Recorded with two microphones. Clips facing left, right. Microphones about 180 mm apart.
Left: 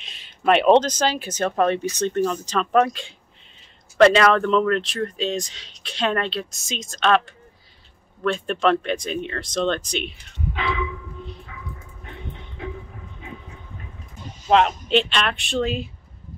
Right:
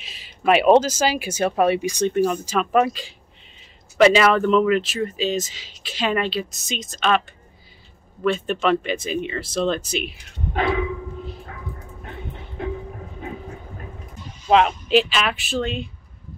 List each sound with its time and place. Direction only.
0.0 s speech: 5° right (ahead or behind)
10.5 s dog: 50° right (ahead or behind)
14.5 s speech: centre (ahead or behind)